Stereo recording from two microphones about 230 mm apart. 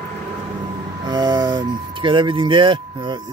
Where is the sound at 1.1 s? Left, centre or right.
Centre.